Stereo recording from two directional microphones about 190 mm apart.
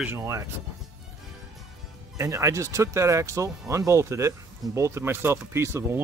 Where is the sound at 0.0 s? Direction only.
15° right (ahead or behind).